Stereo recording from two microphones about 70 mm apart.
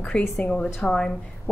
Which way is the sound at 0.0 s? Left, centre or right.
Centre.